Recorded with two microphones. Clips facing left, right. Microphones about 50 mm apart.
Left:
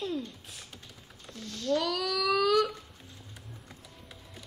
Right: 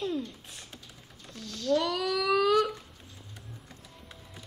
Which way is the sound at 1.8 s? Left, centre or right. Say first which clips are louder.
Right 2 dB; centre.